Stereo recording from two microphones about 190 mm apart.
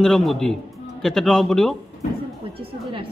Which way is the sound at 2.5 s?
30° right (ahead or behind).